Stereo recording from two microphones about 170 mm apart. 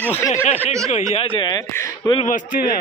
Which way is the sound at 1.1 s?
30° left (ahead or behind).